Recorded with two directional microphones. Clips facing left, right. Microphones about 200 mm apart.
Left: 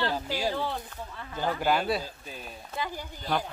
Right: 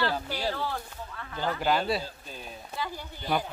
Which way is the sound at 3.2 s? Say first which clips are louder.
Right 1 dB; 10° right (ahead or behind).